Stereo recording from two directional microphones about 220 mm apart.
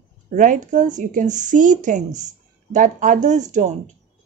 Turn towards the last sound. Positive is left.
turn(degrees=-35)  # may be behind; listen again after turning